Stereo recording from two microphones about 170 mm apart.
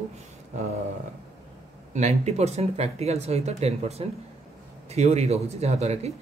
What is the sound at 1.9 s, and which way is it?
A man's voice, 40° right (ahead or behind).